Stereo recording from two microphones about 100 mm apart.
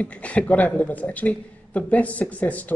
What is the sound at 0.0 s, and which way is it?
Speech, 15° left (ahead or behind).